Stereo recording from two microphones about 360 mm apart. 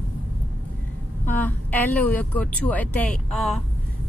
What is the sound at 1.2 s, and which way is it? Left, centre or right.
Speech, centre.